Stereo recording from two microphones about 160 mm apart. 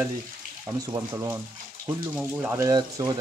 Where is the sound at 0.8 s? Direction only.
20° right (ahead or behind).